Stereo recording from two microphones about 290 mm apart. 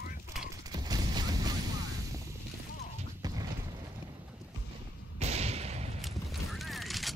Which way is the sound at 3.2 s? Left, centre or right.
Centre.